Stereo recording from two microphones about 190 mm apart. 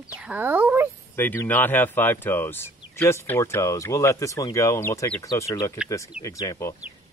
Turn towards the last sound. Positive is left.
turn(degrees=15)  # may be behind; listen again after turning